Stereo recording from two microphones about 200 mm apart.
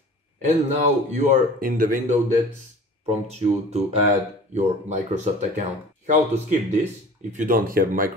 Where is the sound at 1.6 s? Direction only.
45° right (ahead or behind).